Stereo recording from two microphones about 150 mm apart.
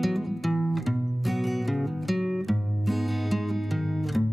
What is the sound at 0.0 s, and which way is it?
Music, centre (ahead or behind).